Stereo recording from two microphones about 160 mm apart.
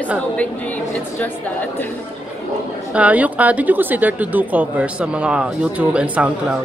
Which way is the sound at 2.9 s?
10° right (ahead or behind).